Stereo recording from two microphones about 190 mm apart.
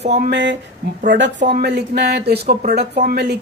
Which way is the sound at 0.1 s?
65° right (ahead or behind).